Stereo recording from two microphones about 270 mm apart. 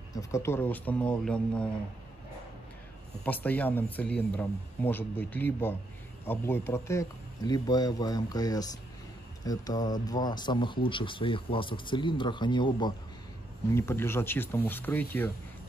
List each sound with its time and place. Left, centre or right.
0.1 s speech: centre
3.3 s speech: centre